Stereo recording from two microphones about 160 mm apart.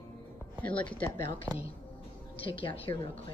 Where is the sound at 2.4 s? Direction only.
35° left (ahead or behind).